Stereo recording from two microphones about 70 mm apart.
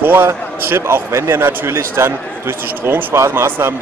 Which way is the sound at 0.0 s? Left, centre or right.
Right.